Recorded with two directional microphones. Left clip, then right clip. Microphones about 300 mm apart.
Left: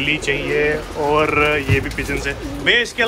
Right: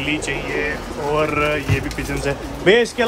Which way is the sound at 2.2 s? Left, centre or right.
Centre.